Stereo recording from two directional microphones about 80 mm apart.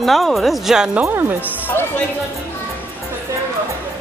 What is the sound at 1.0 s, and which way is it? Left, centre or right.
Speech, right.